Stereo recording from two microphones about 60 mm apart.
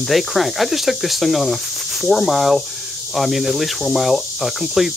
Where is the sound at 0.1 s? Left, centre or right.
Centre.